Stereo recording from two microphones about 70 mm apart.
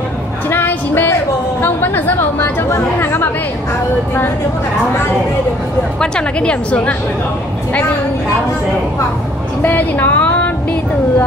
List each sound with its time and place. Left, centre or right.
0.5 s music: left
1.6 s a sound: left
3.0 s chatter: left
5.9 s a woman's voice: centre
9.6 s speech: left